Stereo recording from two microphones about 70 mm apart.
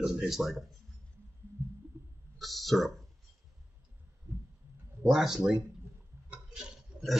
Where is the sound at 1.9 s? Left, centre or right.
Right.